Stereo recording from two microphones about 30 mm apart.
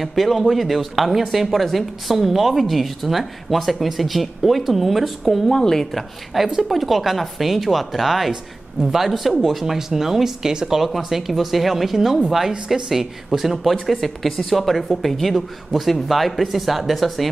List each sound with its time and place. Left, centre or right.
0.0 s speech: centre
5.5 s a woman's voice: centre
5.9 s speech: centre